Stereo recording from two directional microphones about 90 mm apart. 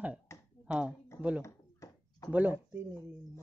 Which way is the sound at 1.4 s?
40° left (ahead or behind).